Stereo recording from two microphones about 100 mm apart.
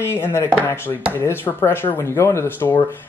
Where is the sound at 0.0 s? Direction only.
25° left (ahead or behind).